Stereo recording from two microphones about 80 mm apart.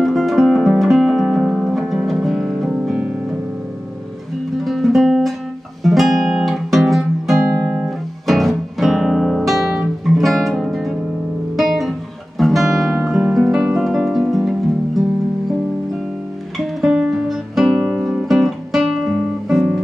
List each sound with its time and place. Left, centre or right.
0.0 s music: centre
4.6 s music: centre
5.9 s guitar: centre
8.3 s music: centre
12.4 s guitar: centre
13.3 s music: centre
16.5 s music: centre
18.3 s guitar: centre